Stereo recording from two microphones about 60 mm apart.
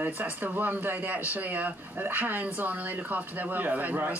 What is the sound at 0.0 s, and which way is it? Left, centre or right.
Speech, right.